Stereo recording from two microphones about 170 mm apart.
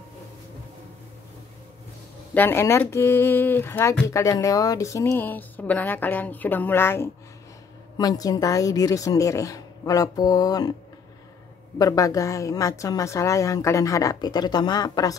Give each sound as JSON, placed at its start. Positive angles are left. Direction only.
{"t": 2.3, "sound": "a woman's voice", "side_deg": 15}
{"t": 11.8, "sound": "a woman's voice", "side_deg": 20}